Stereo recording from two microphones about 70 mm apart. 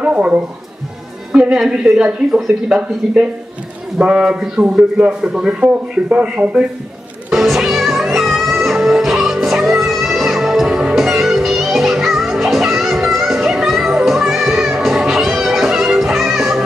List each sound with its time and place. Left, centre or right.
0.0 s a sound: centre
1.3 s a woman's voice: centre
7.2 s music: centre